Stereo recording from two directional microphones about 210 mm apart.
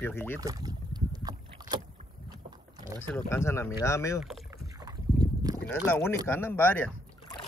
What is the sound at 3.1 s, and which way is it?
Speech, 15° left (ahead or behind).